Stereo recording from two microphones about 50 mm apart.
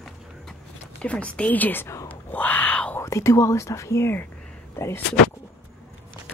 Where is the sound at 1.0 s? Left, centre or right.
Left.